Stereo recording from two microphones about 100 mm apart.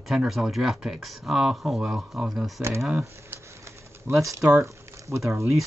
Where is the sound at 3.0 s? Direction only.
30° right (ahead or behind).